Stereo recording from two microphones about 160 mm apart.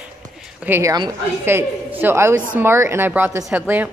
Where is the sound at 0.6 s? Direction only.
15° right (ahead or behind).